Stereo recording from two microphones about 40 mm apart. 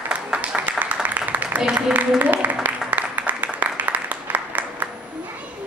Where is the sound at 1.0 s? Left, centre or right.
Right.